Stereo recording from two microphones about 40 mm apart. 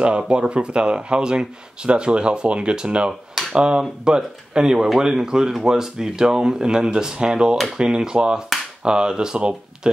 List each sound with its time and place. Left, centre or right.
0.3 s speech: right